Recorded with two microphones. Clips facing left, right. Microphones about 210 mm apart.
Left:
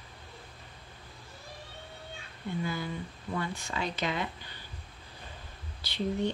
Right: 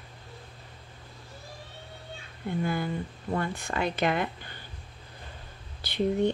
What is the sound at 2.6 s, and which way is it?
Speech, 55° right (ahead or behind).